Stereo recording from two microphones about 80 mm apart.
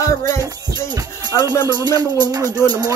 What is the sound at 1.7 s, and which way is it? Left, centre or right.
Music, right.